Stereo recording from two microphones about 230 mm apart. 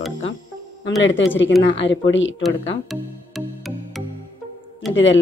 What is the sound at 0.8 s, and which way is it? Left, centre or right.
Speech, left.